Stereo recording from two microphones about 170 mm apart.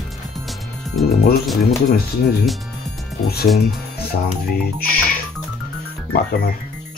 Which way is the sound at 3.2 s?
65° left (ahead or behind).